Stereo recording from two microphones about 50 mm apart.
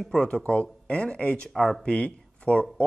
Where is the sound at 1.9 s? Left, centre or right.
Left.